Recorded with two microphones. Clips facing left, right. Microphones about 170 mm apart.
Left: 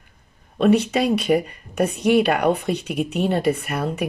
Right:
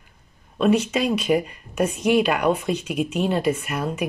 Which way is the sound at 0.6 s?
60° left (ahead or behind).